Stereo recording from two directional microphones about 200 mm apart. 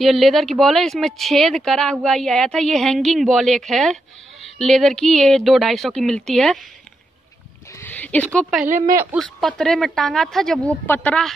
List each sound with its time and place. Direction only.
0.0 s speech: centre (ahead or behind)
7.7 s speech: 10° left (ahead or behind)
8.6 s speech: 40° right (ahead or behind)
9.1 s speech: centre (ahead or behind)